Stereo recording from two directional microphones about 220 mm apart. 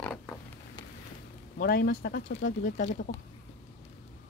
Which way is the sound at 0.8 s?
20° left (ahead or behind).